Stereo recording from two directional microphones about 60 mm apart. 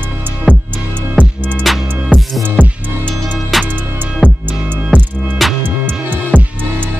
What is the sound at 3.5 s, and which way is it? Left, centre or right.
Music, centre.